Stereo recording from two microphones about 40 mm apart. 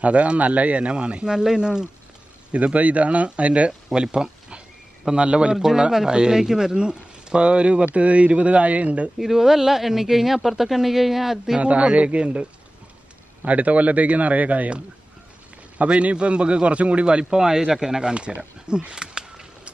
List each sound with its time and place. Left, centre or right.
0.0 s a man's voice: right
1.2 s speech: centre
2.5 s a man's voice: right
3.9 s a man's voice: centre
9.2 s speech: centre
11.6 s a man's voice: right
15.8 s speech: right; by 18.1 s centre
18.1 s a sound: right